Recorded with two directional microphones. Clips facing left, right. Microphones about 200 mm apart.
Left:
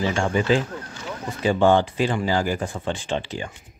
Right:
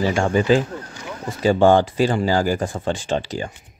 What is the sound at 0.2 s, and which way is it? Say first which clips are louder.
Speech: right 4 dB; 40° right (ahead or behind).